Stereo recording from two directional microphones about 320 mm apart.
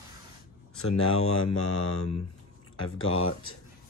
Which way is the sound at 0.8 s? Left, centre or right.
Left.